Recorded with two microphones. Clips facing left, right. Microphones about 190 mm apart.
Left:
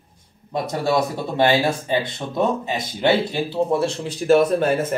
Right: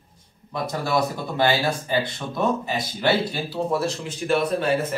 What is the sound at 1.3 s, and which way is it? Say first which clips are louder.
Speech: left 4 dB; 20° left (ahead or behind).